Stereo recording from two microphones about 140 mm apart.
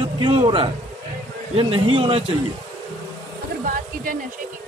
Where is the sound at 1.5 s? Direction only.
40° right (ahead or behind).